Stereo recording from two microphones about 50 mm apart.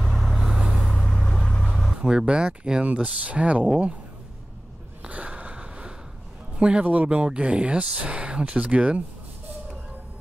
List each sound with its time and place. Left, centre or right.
0.0 s vehicle: centre
2.0 s speech: centre
5.0 s a sound: right
6.6 s speech: centre